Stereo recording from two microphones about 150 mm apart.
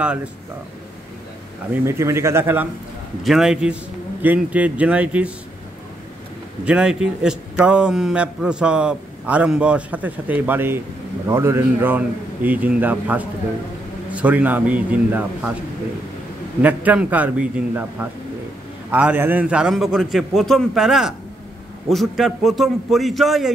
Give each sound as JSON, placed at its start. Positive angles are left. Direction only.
{"t": 0.0, "sound": "a man's voice", "side_deg": -5}
{"t": 1.9, "sound": "a man's voice", "side_deg": -20}
{"t": 6.6, "sound": "a man's voice", "side_deg": -5}
{"t": 16.6, "sound": "a man's voice", "side_deg": -10}